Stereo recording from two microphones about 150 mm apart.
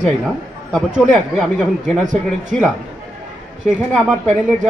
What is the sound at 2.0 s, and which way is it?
Speech, 55° right (ahead or behind).